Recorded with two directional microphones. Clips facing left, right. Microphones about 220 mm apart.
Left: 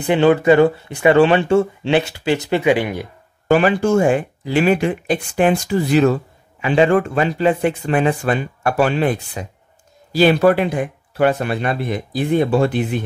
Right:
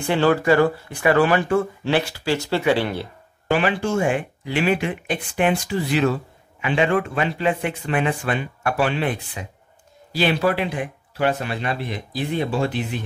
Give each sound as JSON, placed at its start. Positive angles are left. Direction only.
{"t": 0.0, "sound": "speech", "side_deg": 20}
{"t": 3.4, "sound": "speech", "side_deg": 45}